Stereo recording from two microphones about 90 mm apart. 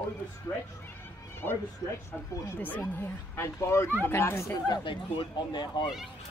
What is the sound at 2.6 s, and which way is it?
Speech, 20° left (ahead or behind).